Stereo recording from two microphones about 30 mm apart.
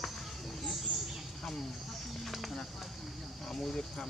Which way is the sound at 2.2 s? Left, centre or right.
Centre.